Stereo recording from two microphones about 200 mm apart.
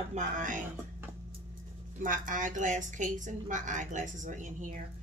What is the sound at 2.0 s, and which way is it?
A woman's voice, 40° right (ahead or behind).